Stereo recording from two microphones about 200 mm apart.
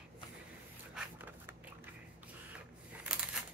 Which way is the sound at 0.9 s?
10° right (ahead or behind).